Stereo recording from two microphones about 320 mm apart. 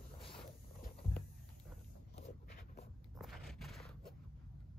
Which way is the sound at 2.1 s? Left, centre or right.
Left.